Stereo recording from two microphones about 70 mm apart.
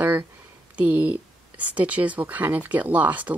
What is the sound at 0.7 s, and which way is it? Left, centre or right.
Speech, right.